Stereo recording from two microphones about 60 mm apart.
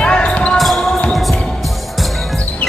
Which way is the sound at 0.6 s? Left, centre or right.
Centre.